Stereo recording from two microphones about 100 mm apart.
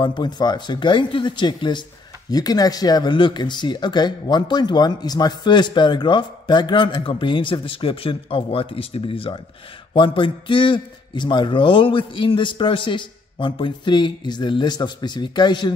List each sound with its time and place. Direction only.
0.0 s speech: 50° left (ahead or behind)
2.3 s a man's voice: 40° left (ahead or behind)